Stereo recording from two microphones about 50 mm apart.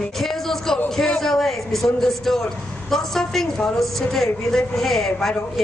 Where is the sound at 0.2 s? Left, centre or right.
Centre.